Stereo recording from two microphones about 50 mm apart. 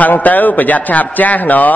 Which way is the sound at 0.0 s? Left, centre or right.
Left.